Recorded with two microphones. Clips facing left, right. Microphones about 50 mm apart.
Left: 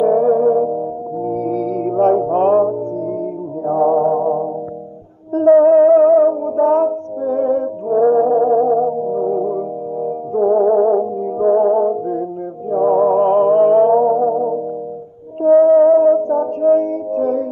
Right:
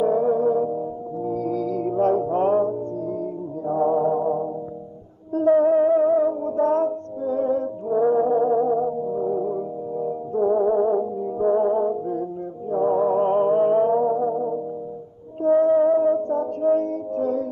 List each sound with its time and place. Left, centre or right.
0.0 s music: left
3.9 s music: left
6.4 s music: left
8.5 s music: left
10.3 s music: left
15.4 s music: left